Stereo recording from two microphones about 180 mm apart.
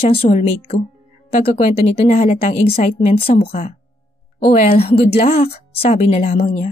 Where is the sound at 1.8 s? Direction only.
40° left (ahead or behind).